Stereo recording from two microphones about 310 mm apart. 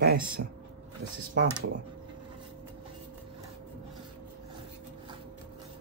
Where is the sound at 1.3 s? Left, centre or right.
Right.